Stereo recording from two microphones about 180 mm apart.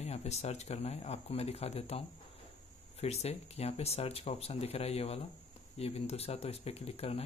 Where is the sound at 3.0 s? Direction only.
35° left (ahead or behind).